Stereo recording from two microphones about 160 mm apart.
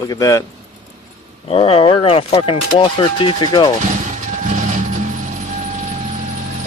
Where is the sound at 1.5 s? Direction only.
35° left (ahead or behind).